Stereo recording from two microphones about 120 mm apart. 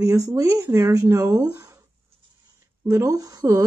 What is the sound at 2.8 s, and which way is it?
Speech, 25° right (ahead or behind).